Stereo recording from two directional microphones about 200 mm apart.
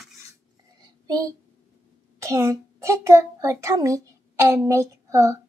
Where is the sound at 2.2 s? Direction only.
15° right (ahead or behind).